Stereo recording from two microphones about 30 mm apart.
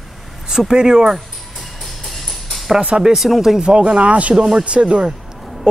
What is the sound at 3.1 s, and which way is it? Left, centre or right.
Speech, centre.